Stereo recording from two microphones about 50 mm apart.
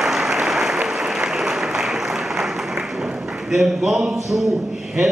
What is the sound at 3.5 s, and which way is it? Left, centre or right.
Speech, centre.